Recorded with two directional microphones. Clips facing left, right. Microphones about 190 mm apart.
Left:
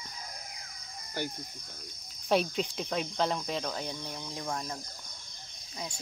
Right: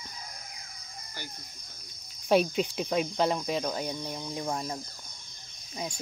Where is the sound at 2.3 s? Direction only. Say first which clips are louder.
Right 4 dB; 5° right (ahead or behind).